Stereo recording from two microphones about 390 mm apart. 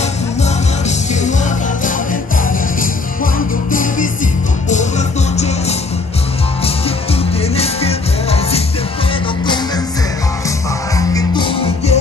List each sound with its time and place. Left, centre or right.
4.6 s music: centre
7.5 s music: centre
11.0 s music: centre